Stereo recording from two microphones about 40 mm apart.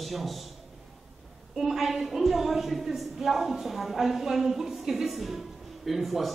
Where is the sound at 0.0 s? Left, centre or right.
Centre.